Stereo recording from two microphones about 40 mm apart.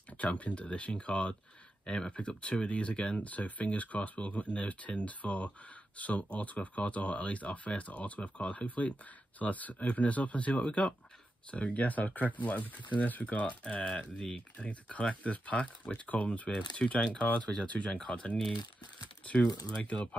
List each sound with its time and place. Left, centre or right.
0.2 s speech: left
3.2 s speech: left
13.7 s speech: left
14.6 s speech: left
16.4 s speech: centre